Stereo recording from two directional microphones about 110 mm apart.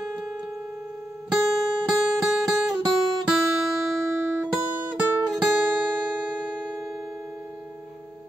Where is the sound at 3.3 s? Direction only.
5° right (ahead or behind).